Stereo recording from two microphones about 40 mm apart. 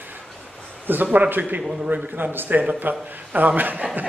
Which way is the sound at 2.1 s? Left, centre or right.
Right.